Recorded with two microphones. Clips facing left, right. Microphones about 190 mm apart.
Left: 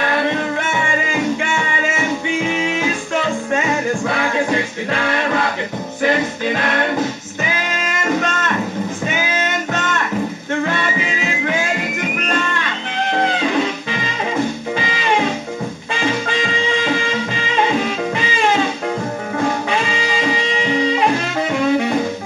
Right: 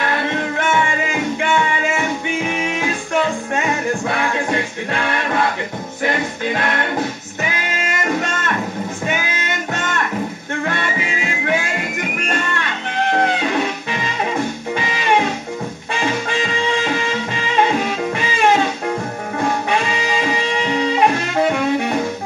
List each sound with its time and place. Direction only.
21.4 s saxophone: 55° right (ahead or behind)